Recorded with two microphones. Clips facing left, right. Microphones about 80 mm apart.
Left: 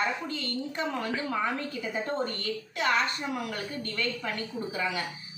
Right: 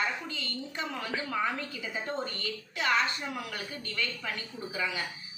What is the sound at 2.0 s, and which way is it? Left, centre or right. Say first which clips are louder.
A woman's voice: left 3 dB; left.